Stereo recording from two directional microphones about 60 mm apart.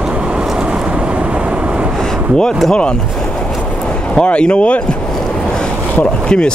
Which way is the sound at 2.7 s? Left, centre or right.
Centre.